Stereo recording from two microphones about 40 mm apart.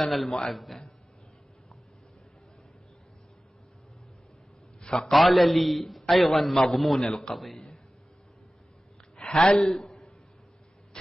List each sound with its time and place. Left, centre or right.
0.0 s a man's voice: centre
4.8 s a man's voice: centre
5.1 s a man's voice: centre
9.3 s a man's voice: centre
9.8 s a sound: left